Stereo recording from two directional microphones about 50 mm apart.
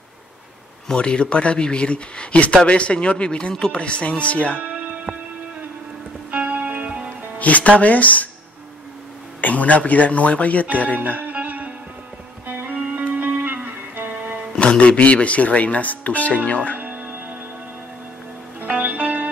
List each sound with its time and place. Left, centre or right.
0.8 s speech: centre
4.6 s music: right
6.3 s music: right
7.3 s speech: left
9.4 s speech: left
11.0 s music: right
14.1 s music: right
14.5 s speech: centre
16.7 s music: right
18.7 s music: right